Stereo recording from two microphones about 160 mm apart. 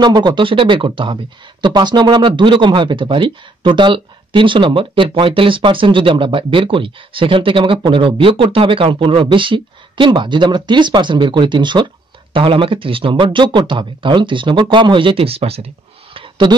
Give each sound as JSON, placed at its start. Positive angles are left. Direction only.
{"t": 0.0, "sound": "speech", "side_deg": -25}